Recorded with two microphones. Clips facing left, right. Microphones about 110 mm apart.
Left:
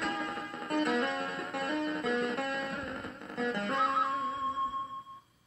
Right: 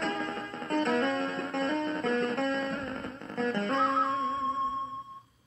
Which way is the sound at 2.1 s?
Centre (ahead or behind).